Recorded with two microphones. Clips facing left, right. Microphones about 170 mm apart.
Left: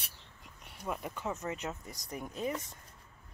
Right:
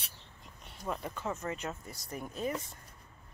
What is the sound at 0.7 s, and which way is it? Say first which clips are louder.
Speech: right 1 dB; 10° left (ahead or behind).